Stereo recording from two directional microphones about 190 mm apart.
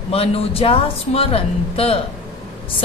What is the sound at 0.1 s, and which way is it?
A woman's voice, 30° left (ahead or behind).